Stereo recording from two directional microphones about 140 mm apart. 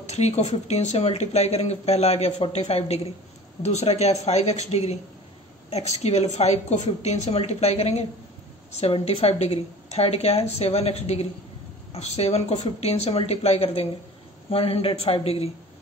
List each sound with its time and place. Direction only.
0.1 s speech: 50° left (ahead or behind)
3.6 s speech: 50° left (ahead or behind)